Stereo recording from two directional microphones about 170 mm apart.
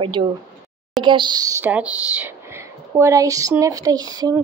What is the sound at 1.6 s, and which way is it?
A woman's voice, 10° right (ahead or behind).